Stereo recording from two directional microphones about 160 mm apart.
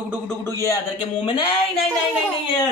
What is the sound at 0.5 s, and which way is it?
Speech, 20° left (ahead or behind).